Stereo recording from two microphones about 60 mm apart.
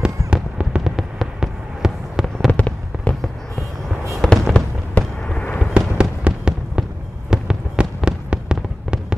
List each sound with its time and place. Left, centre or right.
0.0 s fireworks: centre
0.8 s fireworks: centre
2.5 s fireworks: left
4.1 s fireworks: centre
4.6 s fireworks: centre
5.7 s fireworks: centre